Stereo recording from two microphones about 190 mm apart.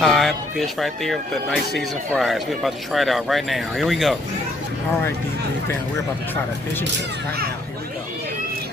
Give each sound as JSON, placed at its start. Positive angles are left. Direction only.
{"t": 0.0, "sound": "speech", "side_deg": 0}